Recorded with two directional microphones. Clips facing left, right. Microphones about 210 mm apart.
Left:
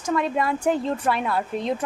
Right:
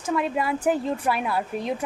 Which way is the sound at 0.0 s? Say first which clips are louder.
Left 1 dB; 5° right (ahead or behind).